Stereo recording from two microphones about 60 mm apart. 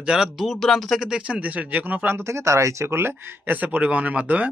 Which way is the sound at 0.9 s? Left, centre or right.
Centre.